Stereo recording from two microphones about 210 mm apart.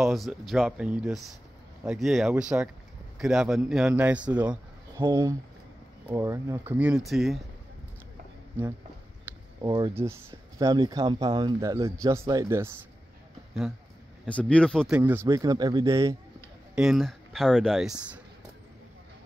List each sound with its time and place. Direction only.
0.0 s speech: centre (ahead or behind)
4.9 s speech: 20° right (ahead or behind); by 7.4 s centre (ahead or behind)
9.6 s speech: 20° right (ahead or behind)
14.2 s speech: 5° left (ahead or behind)
15.0 s speech: 10° right (ahead or behind)
16.7 s speech: centre (ahead or behind)